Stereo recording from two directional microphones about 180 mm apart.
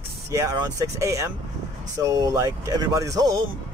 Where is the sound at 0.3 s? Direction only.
20° right (ahead or behind).